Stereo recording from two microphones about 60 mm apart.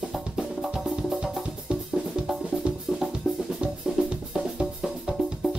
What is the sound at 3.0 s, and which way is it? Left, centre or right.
Drum, centre.